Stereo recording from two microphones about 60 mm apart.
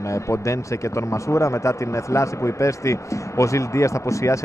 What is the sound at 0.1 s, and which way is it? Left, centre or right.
A man's voice, left.